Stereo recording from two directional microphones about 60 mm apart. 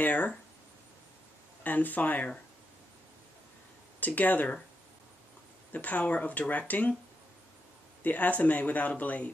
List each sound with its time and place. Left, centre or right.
0.0 s speech: left
1.6 s speech: left
4.0 s speech: left
5.7 s speech: left
8.0 s speech: left